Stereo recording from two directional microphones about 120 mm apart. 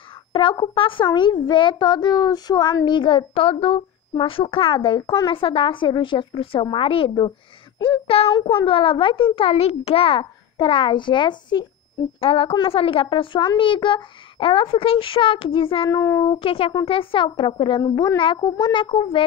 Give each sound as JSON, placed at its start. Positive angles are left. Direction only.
{"t": 0.3, "sound": "a child's voice", "side_deg": 45}
{"t": 15.9, "sound": "speech", "side_deg": 30}
{"t": 16.3, "sound": "a child's voice", "side_deg": 50}